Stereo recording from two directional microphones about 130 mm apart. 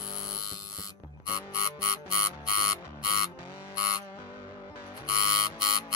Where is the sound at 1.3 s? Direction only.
30° left (ahead or behind).